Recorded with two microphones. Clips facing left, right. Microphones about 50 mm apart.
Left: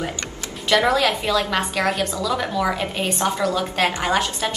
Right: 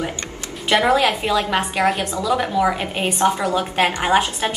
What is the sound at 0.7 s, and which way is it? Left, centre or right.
A woman's voice, right.